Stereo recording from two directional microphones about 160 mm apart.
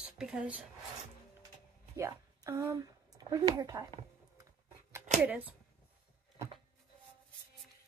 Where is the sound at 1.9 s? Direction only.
20° right (ahead or behind).